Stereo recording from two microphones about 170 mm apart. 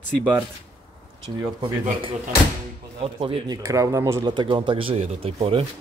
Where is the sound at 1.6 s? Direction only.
30° right (ahead or behind).